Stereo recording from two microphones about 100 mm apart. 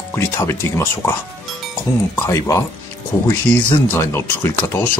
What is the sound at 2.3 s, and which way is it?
Speech, 35° left (ahead or behind).